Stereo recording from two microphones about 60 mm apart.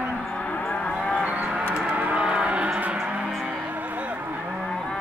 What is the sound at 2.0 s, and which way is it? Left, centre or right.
Cattle, right.